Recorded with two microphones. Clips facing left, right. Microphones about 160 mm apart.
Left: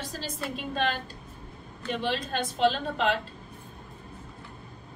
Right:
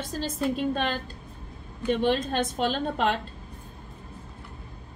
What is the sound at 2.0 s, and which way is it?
A woman's voice, 45° right (ahead or behind).